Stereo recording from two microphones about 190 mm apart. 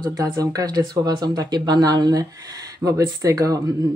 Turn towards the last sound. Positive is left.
turn(degrees=-20)  # may be behind; listen again after turning